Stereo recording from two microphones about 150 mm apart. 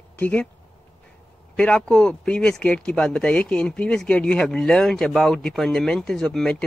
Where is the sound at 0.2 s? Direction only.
10° left (ahead or behind).